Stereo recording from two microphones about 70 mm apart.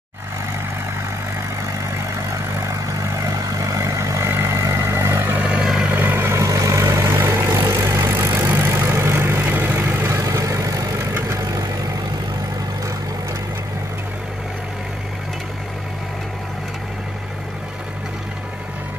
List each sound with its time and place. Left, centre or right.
1.7 s vehicle: right
4.3 s vehicle: right
5.4 s vehicle: centre
5.9 s vehicle: right
6.4 s vehicle: right
7.6 s vehicle: right
8.4 s vehicle: right
10.1 s vehicle: right
11.0 s vehicle: right